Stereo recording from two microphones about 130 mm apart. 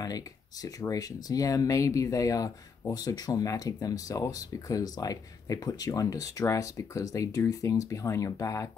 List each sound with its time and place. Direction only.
0.0 s speech: 30° left (ahead or behind)